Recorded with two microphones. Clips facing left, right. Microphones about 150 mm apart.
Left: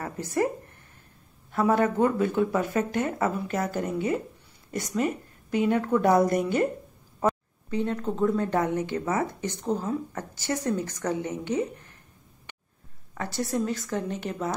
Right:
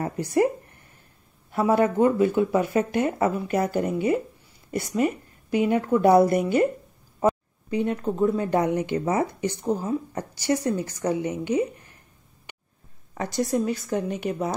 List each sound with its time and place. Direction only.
0.2 s speech: 15° right (ahead or behind)
1.5 s a woman's voice: 10° right (ahead or behind)
7.2 s a sound: 10° right (ahead or behind)
8.4 s speech: 15° right (ahead or behind)
13.2 s speech: 15° right (ahead or behind)